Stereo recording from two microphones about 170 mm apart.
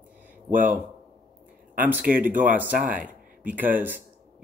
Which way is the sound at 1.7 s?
10° right (ahead or behind).